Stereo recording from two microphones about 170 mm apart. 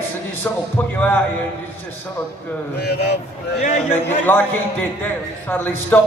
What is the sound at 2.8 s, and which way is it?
Speech, 75° left (ahead or behind).